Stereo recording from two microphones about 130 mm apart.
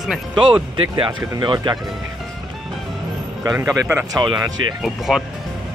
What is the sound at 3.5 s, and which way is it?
Speech, 20° right (ahead or behind).